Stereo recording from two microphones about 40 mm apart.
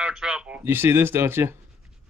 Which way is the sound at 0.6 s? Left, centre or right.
Right.